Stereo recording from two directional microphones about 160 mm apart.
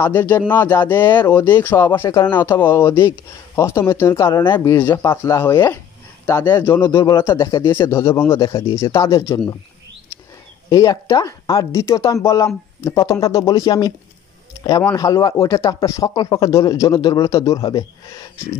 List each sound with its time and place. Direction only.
0.3 s speech: 10° left (ahead or behind)
1.0 s speech: 25° left (ahead or behind)
1.3 s speech: 10° left (ahead or behind)
6.6 s speech: 15° left (ahead or behind)
10.7 s speech: 20° left (ahead or behind)
15.0 s speech: 20° left (ahead or behind)